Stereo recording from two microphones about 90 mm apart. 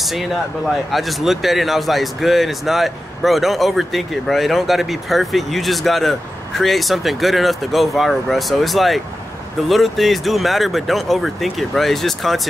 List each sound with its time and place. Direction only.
0.0 s speech: centre (ahead or behind)